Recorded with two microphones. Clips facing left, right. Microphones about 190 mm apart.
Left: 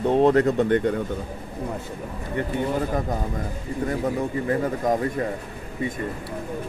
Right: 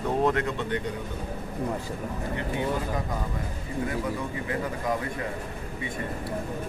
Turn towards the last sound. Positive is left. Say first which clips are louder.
# left 6 dB
turn(degrees=40)  # may be behind; listen again after turning